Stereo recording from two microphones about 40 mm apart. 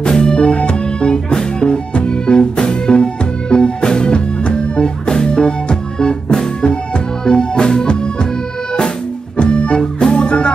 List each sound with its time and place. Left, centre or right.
0.0 s music: left
9.4 s music: left